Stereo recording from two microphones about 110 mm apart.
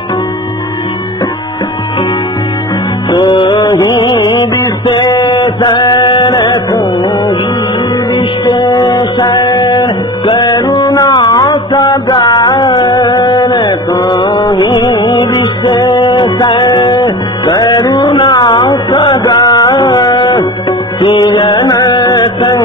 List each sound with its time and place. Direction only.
3.1 s music: 45° left (ahead or behind)
3.5 s music: 35° left (ahead or behind)
5.0 s a sound: 25° left (ahead or behind)
5.6 s music: 45° left (ahead or behind); by 7.3 s 25° left (ahead or behind)
8.6 s music: 30° left (ahead or behind)
10.4 s music: 30° left (ahead or behind)
11.1 s a sound: 35° left (ahead or behind)
12.1 s music: 35° left (ahead or behind)
13.4 s carnatic music: 30° left (ahead or behind)
14.0 s mantra: 40° left (ahead or behind)
15.2 s music: 30° left (ahead or behind)
16.0 s music: 45° left (ahead or behind)